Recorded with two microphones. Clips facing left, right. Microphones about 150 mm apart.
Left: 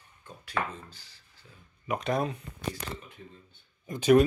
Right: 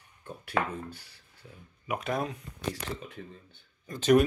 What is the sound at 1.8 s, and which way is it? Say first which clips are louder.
Speech: left 2 dB; 5° right (ahead or behind).